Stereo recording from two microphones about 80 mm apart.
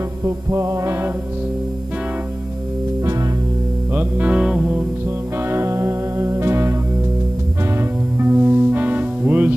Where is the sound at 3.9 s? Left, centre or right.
Right.